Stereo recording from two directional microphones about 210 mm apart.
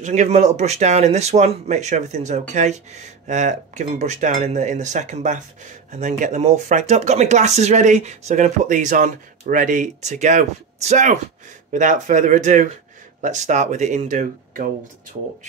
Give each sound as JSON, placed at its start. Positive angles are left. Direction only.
{"t": 0.0, "sound": "speech", "side_deg": -35}